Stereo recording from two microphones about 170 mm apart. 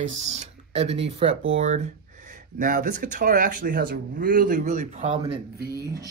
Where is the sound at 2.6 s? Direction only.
55° right (ahead or behind).